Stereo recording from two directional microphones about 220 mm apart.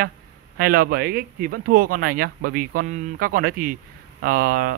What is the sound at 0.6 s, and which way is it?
Speech, 40° right (ahead or behind).